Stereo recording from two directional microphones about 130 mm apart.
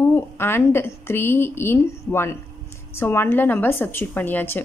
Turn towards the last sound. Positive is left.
turn(degrees=15)  # may be behind; listen again after turning